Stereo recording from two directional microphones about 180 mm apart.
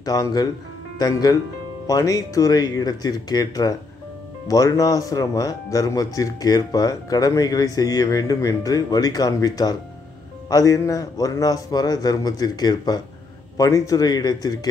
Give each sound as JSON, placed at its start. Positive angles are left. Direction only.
{"t": 0.0, "sound": "speech", "side_deg": 20}